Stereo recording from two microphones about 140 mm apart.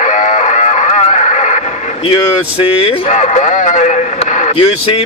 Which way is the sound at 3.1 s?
55° left (ahead or behind).